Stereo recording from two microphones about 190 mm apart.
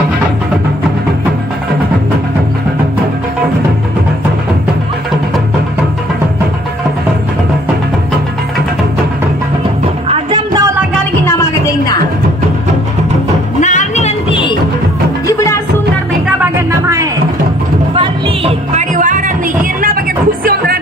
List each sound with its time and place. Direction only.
10.0 s music: 20° right (ahead or behind)
13.6 s music: 40° left (ahead or behind)
15.2 s music: 15° left (ahead or behind)
16.3 s music: 15° right (ahead or behind)
17.9 s music: 35° right (ahead or behind)